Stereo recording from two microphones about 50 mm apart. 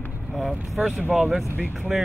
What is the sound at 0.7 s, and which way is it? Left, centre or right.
Speech, centre.